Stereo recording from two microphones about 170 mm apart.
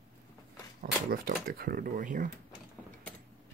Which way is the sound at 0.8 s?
60° right (ahead or behind).